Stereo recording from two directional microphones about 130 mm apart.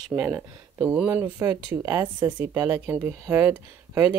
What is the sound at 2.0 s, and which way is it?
Speech, 15° right (ahead or behind).